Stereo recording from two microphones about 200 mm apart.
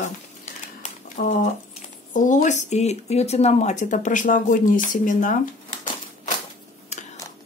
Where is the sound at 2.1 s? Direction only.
40° left (ahead or behind).